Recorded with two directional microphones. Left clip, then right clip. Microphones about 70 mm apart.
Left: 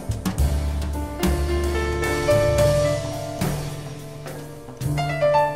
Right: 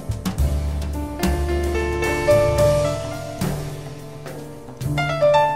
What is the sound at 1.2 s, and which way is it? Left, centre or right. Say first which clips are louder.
Music: right 1 dB; right.